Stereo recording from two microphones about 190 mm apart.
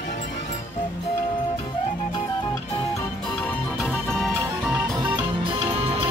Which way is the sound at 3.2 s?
5° left (ahead or behind).